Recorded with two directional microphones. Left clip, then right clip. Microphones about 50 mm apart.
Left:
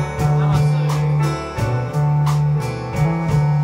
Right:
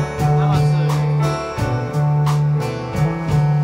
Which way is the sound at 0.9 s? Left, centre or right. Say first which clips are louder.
Right 1 dB; centre.